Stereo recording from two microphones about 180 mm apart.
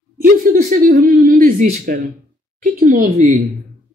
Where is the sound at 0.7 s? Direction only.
50° right (ahead or behind).